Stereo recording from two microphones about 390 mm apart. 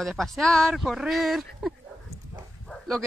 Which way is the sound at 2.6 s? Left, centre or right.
Centre.